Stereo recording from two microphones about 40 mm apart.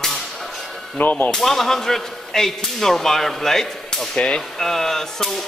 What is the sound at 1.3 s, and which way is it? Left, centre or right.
Speech, centre.